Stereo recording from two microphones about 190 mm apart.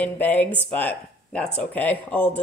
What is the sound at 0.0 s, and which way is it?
Speech, 10° left (ahead or behind).